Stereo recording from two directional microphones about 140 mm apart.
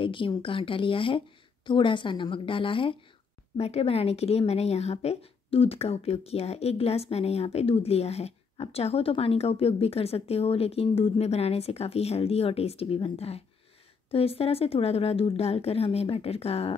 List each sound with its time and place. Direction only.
0.0 s a woman's voice: 35° left (ahead or behind)